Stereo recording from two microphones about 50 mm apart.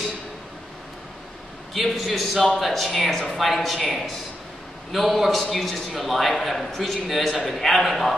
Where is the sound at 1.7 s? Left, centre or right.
Centre.